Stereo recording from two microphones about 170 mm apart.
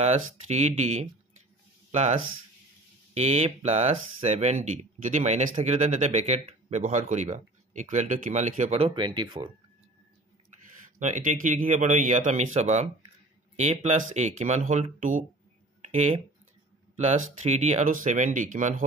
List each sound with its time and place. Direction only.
0.0 s speech: 40° right (ahead or behind)
3.2 s speech: 40° right (ahead or behind)
11.0 s speech: 45° right (ahead or behind)